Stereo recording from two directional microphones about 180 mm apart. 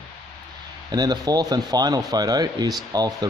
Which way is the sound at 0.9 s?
20° right (ahead or behind).